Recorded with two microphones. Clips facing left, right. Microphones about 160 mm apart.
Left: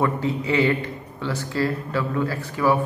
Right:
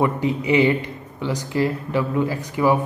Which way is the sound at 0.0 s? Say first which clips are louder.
Right 2 dB; 15° right (ahead or behind).